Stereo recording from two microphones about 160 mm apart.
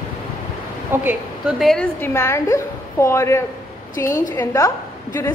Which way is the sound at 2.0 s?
15° left (ahead or behind).